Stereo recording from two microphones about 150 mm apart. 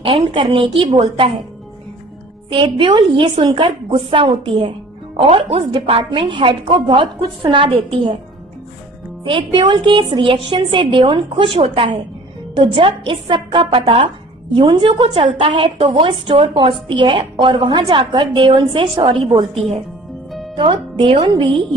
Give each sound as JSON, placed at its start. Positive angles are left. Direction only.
{"t": 0.0, "sound": "a woman's voice", "side_deg": -35}
{"t": 2.5, "sound": "a woman's voice", "side_deg": -35}
{"t": 9.2, "sound": "a woman's voice", "side_deg": -35}
{"t": 20.2, "sound": "music", "side_deg": 0}
{"t": 20.5, "sound": "a woman's voice", "side_deg": -30}